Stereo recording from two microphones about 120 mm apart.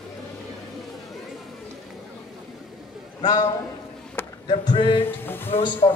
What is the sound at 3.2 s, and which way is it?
Speech, 35° left (ahead or behind).